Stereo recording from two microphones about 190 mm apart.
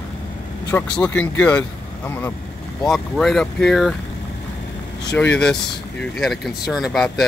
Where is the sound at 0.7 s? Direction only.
5° left (ahead or behind).